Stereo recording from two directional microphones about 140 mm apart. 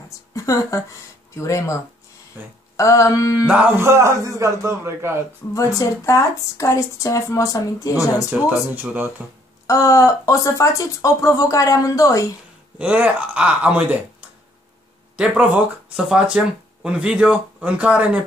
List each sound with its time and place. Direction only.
0.3 s a woman's voice: 25° left (ahead or behind)
2.4 s speech: 15° right (ahead or behind)
2.8 s speech: 25° left (ahead or behind)
3.4 s speech: 10° right (ahead or behind)
5.5 s speech: 25° left (ahead or behind)
8.3 s speech: 15° right (ahead or behind)
9.7 s speech: 20° left (ahead or behind)
12.7 s speech: 10° right (ahead or behind)
15.1 s speech: 10° right (ahead or behind)